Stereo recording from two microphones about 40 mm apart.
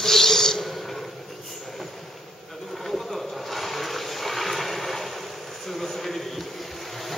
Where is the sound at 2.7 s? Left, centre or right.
Centre.